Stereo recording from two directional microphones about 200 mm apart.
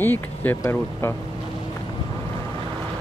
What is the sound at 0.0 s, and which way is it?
Speech, 10° left (ahead or behind).